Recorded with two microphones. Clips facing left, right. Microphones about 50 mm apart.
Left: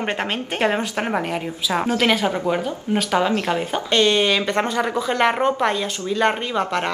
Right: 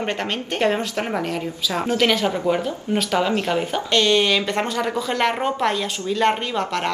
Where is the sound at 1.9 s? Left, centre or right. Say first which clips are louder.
Right 2 dB; centre.